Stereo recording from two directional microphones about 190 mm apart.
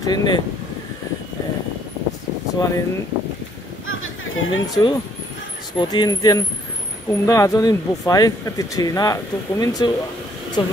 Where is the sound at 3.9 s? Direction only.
90° left.